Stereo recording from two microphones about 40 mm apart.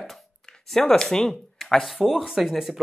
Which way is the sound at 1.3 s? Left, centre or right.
Centre.